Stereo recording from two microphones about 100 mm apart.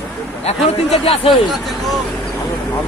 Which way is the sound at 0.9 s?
70° left (ahead or behind).